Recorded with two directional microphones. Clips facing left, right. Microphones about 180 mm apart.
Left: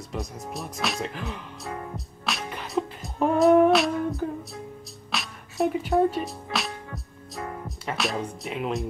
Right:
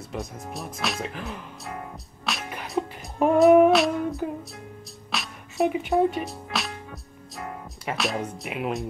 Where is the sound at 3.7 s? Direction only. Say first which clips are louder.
Right 1 dB; centre (ahead or behind).